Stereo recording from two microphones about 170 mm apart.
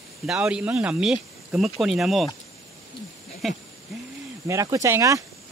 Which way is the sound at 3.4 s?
Centre (ahead or behind).